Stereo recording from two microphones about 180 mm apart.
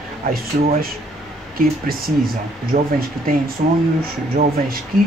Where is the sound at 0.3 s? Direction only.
55° right (ahead or behind).